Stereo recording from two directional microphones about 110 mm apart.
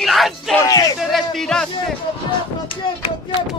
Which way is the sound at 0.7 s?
35° left (ahead or behind).